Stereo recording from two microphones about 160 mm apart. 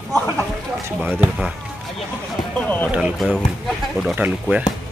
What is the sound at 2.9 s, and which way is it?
Speech, 5° right (ahead or behind).